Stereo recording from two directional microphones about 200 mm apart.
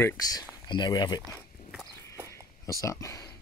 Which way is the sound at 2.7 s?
15° left (ahead or behind).